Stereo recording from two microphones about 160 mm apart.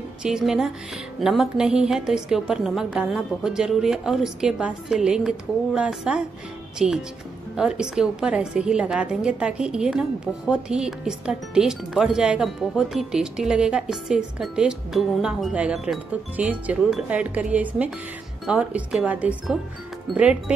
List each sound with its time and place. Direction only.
0.2 s a woman's voice: 5° right (ahead or behind)